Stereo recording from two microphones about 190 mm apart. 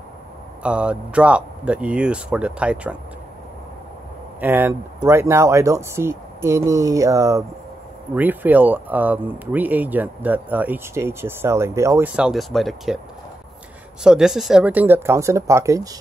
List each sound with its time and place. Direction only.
0.6 s speech: 5° right (ahead or behind)
4.4 s speech: 10° right (ahead or behind)
12.2 s speech: centre (ahead or behind)
14.0 s speech: 5° right (ahead or behind)